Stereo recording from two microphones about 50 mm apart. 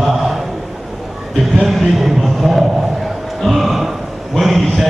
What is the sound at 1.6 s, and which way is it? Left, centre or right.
Speech, centre.